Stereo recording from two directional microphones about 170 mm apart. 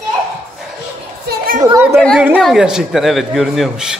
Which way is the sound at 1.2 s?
55° right (ahead or behind).